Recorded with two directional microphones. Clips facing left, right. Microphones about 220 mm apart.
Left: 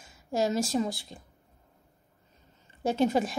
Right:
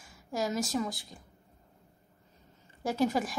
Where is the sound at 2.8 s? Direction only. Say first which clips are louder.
Left 3 dB; 25° left (ahead or behind).